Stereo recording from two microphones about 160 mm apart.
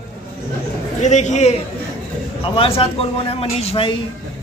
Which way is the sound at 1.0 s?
50° left (ahead or behind).